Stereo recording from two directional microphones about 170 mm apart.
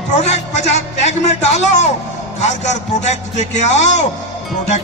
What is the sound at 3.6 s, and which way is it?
Speech, 40° left (ahead or behind).